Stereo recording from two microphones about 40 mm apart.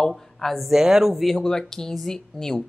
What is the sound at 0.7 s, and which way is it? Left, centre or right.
Speech, centre.